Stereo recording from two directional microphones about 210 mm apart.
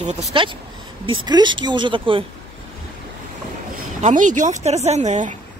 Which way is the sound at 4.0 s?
35° right (ahead or behind).